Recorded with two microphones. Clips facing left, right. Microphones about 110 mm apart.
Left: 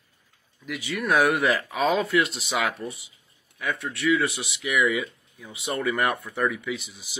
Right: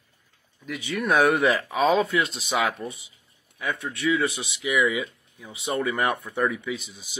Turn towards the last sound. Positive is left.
turn(degrees=-20)  # may be behind; listen again after turning